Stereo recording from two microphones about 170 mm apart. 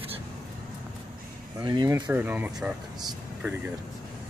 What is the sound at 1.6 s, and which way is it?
Speech, 25° right (ahead or behind).